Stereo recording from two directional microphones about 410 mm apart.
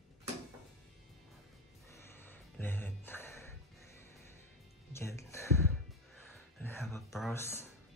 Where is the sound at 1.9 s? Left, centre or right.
Centre.